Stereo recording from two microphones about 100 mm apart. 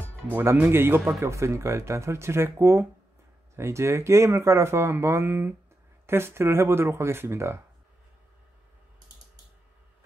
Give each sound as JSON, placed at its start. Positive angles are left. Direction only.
{"t": 0.3, "sound": "speech", "side_deg": -20}